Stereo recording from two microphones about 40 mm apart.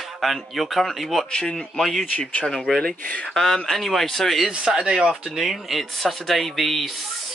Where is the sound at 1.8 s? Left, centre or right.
Centre.